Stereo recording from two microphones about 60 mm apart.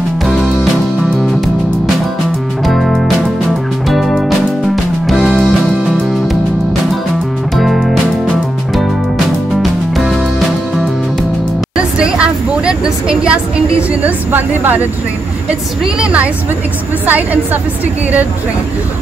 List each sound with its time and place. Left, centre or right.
2.6 s music: centre
7.5 s music: centre
9.6 s music: centre
11.7 s a sound: centre
14.3 s speech: right
16.0 s a woman's voice: right